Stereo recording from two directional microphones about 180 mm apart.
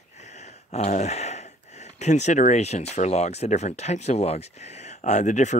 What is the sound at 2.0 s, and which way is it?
Speech, 40° left (ahead or behind).